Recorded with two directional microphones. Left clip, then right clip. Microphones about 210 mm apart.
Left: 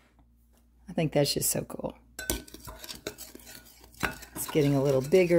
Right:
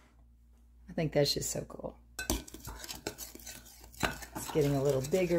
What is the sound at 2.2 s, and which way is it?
Cutlery, centre (ahead or behind).